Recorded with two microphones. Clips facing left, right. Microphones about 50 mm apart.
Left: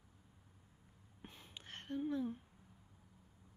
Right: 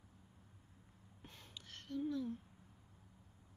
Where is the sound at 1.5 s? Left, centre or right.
Left.